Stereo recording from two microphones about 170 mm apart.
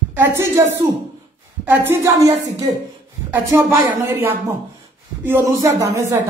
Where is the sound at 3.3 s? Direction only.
15° right (ahead or behind).